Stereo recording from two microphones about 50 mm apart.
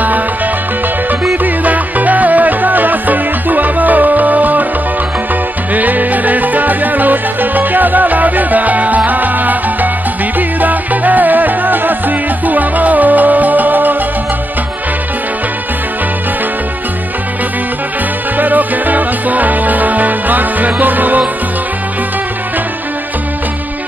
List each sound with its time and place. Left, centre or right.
1.4 s music: right
5.7 s music: right
18.4 s music: right